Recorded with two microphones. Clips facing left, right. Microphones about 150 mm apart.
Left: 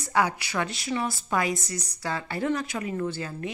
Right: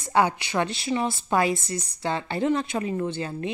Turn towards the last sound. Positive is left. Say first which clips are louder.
# right 2 dB
turn(degrees=-25)  # may be behind; listen again after turning